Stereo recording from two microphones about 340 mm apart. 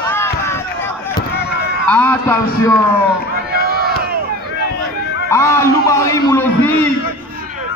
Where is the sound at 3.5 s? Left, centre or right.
Right.